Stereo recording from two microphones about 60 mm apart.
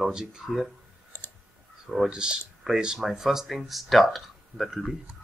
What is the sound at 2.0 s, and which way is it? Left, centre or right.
Speech, centre.